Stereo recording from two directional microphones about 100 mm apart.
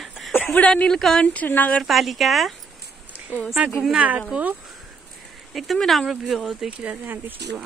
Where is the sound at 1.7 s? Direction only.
Centre (ahead or behind).